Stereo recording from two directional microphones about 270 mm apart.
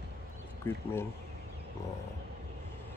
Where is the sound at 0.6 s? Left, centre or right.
Centre.